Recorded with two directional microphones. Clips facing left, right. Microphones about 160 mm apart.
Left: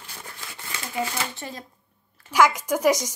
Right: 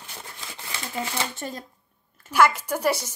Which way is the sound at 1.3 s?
50° right (ahead or behind).